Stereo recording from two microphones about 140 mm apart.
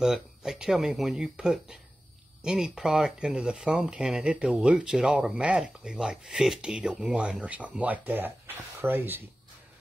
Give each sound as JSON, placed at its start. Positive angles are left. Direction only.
{"t": 0.0, "sound": "speech", "side_deg": -5}